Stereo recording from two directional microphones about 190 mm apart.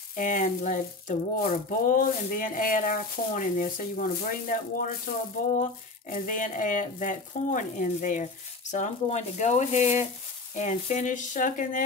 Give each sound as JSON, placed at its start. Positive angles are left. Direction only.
{"t": 0.1, "sound": "sizzle", "side_deg": 45}
{"t": 5.6, "sound": "speech", "side_deg": 45}